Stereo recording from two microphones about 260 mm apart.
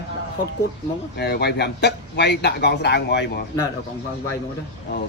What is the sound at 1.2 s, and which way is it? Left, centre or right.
Speech, left.